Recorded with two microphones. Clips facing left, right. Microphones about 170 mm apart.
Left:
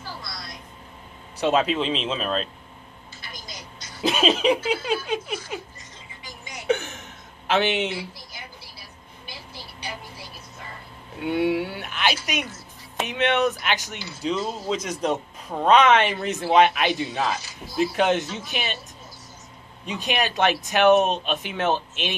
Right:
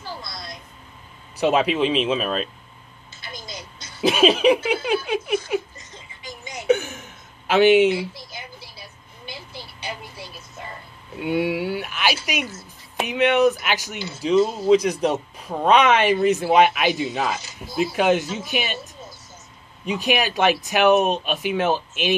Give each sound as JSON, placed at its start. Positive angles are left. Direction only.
{"t": 1.4, "sound": "speech", "side_deg": -10}
{"t": 4.1, "sound": "speech", "side_deg": -10}
{"t": 7.4, "sound": "speech", "side_deg": -10}
{"t": 8.3, "sound": "a sound", "side_deg": -20}
{"t": 11.2, "sound": "speech", "side_deg": -5}
{"t": 17.2, "sound": "speech", "side_deg": -20}
{"t": 17.9, "sound": "speech", "side_deg": -5}
{"t": 19.9, "sound": "speech", "side_deg": -5}